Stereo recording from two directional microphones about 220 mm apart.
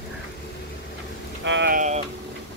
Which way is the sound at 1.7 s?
35° right (ahead or behind).